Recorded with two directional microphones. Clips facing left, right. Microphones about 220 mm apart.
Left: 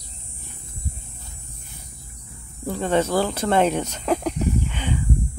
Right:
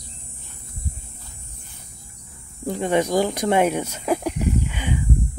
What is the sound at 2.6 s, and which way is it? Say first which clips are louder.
Speech: right 1 dB; 15° right (ahead or behind).